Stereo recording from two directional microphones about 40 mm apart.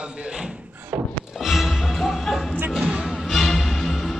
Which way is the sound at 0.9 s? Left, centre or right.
Right.